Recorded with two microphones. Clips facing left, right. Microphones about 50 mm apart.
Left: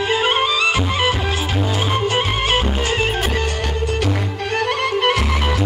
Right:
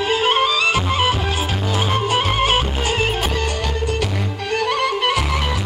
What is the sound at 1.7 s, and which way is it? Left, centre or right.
Music, centre.